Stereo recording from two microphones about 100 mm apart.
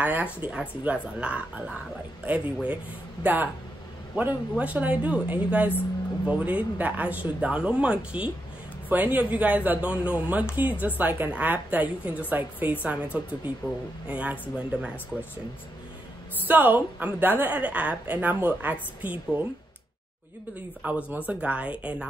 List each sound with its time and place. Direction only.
0.0 s a woman's voice: 15° right (ahead or behind)
16.4 s a woman's voice: 20° right (ahead or behind)
20.8 s a woman's voice: 15° right (ahead or behind)